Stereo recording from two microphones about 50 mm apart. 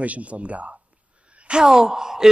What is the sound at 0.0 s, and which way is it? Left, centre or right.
Speech, right.